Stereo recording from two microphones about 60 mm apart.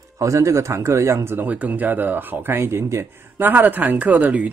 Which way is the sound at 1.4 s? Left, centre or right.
Right.